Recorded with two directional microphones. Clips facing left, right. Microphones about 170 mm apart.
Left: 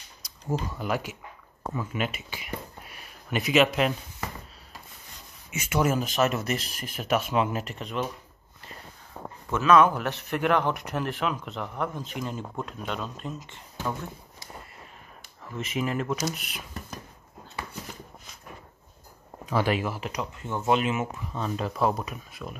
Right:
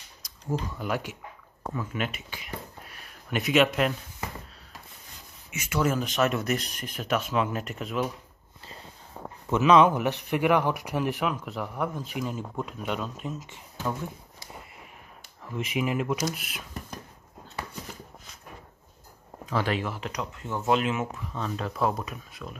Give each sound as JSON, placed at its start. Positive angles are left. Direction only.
{"t": 0.7, "sound": "speech", "side_deg": 0}
{"t": 5.5, "sound": "speech", "side_deg": 25}
{"t": 5.8, "sound": "speech", "side_deg": 5}
{"t": 9.5, "sound": "a man's voice", "side_deg": -15}
{"t": 15.5, "sound": "a man's voice", "side_deg": -10}
{"t": 19.5, "sound": "speech", "side_deg": 10}